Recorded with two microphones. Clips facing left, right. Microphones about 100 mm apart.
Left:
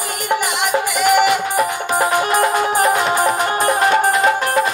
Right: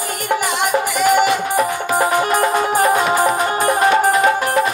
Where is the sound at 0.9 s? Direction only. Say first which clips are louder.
Left 1 dB; 30° right (ahead or behind).